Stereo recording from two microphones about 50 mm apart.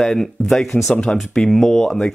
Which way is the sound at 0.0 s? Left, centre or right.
Centre.